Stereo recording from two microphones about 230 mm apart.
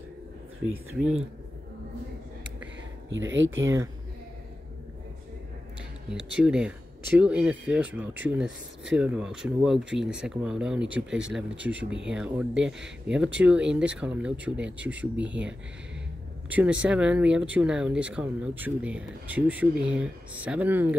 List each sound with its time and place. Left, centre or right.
3.1 s speech: right
6.0 s speech: centre
15.1 s speech: right
16.4 s speech: centre